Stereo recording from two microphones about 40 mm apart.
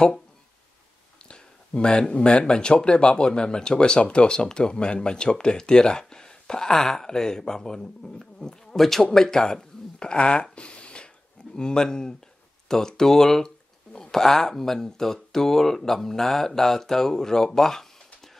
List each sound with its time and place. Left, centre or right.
1.3 s speech: left
9.9 s speech: left
10.5 s a sound: left
11.5 s speech: centre